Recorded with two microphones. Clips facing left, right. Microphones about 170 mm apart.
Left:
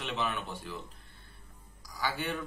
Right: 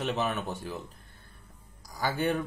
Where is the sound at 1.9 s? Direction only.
45° right (ahead or behind).